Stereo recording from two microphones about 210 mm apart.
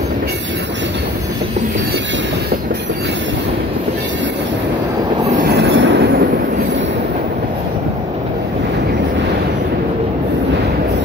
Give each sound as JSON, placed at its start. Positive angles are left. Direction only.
{"t": 5.6, "sound": "train", "side_deg": -60}